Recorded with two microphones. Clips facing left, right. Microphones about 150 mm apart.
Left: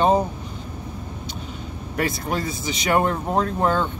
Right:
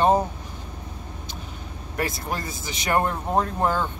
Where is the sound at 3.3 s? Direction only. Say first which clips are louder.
Left 1 dB; 5° right (ahead or behind).